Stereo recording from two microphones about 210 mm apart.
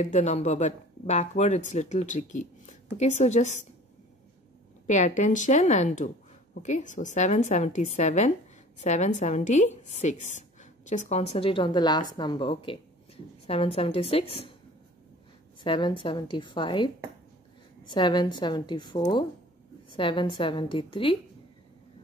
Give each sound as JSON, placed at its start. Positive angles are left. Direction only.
{"t": 0.0, "sound": "a woman's voice", "side_deg": 35}
{"t": 4.8, "sound": "a woman's voice", "side_deg": 35}
{"t": 15.6, "sound": "a woman's voice", "side_deg": 25}